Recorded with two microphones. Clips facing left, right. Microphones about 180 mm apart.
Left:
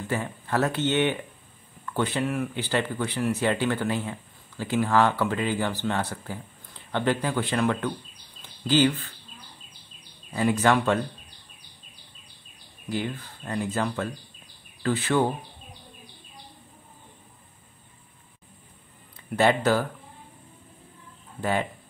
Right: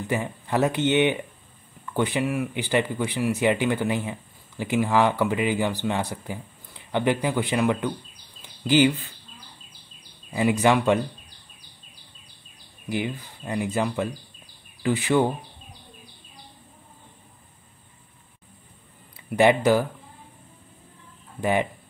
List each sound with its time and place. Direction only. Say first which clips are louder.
0.0 s speech: right 2 dB; 15° right (ahead or behind)
10.3 s speech: right 2 dB; 15° right (ahead or behind)
12.9 s speech: right 2 dB; 15° right (ahead or behind)
19.1 s speech: right 3 dB; 15° right (ahead or behind)
21.4 s speech: right 3 dB; 15° right (ahead or behind)